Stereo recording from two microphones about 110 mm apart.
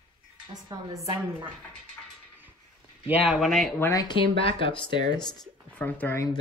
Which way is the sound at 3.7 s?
25° left (ahead or behind).